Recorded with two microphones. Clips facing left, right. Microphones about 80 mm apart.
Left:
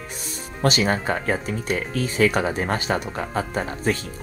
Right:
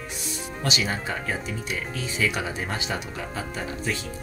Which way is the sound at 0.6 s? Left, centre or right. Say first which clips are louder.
Left 7 dB; left.